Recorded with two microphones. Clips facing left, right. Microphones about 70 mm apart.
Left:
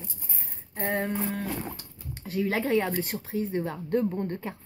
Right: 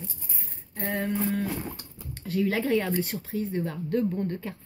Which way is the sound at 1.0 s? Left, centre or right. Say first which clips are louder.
Right 2 dB; centre.